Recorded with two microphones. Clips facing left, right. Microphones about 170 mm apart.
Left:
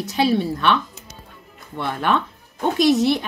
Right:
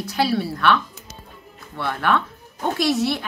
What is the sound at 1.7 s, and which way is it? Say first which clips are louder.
A woman's voice: even; 20° left (ahead or behind).